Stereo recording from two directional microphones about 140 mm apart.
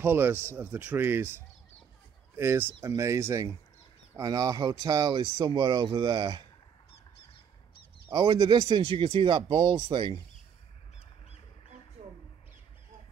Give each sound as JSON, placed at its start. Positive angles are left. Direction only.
{"t": 0.0, "sound": "speech", "side_deg": -15}
{"t": 8.1, "sound": "speech", "side_deg": -35}